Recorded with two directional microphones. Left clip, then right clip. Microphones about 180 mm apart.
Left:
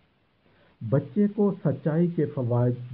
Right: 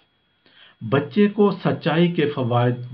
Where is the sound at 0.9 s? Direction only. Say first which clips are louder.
Right 7 dB; 35° left (ahead or behind).